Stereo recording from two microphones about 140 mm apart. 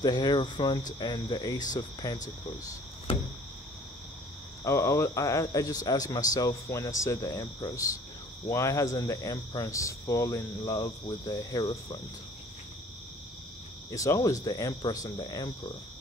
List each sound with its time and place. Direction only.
0.0 s cricket: 30° left (ahead or behind)
3.1 s cricket: 40° left (ahead or behind)
4.6 s speech: 20° left (ahead or behind)
13.8 s speech: 25° left (ahead or behind)